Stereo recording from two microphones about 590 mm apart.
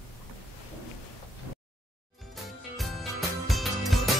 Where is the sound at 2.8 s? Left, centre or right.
Centre.